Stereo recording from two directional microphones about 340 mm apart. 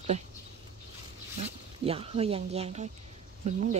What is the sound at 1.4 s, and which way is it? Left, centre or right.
Speech, centre.